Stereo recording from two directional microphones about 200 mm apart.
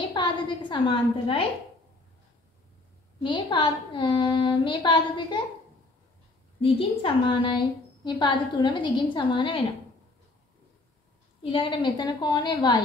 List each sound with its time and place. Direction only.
0.1 s a sound: 25° left (ahead or behind)
3.2 s a woman's voice: 25° left (ahead or behind)
6.6 s a woman's voice: 30° left (ahead or behind)
11.5 s a woman's voice: 25° left (ahead or behind)